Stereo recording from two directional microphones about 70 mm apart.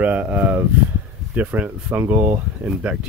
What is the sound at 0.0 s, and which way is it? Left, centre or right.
Speech, right.